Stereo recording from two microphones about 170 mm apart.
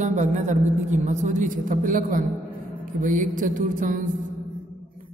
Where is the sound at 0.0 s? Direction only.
45° right (ahead or behind).